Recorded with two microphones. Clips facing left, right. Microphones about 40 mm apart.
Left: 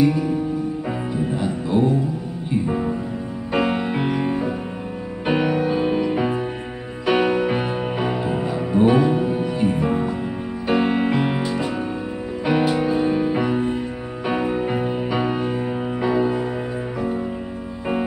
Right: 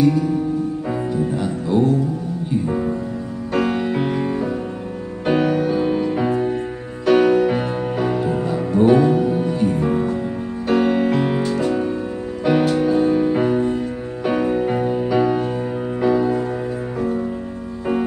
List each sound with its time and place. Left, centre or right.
0.0 s music: centre